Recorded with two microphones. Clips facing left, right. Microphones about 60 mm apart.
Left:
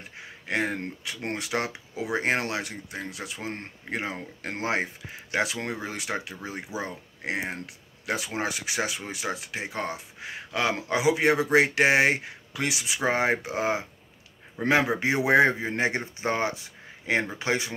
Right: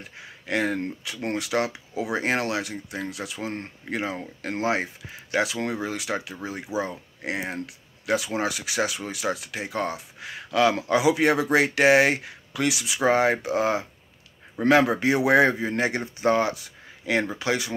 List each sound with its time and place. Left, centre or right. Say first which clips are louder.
0.5 s speech: right 3 dB; left
6.7 s speech: right 6 dB; right
7.2 s speech: right 1 dB; left